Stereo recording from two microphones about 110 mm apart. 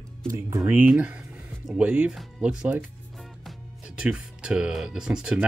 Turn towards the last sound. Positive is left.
turn(degrees=-5)  # may be behind; listen again after turning